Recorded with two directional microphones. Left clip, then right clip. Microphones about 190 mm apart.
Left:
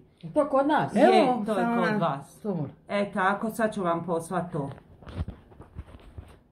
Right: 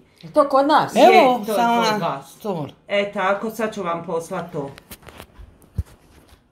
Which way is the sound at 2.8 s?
55° left (ahead or behind).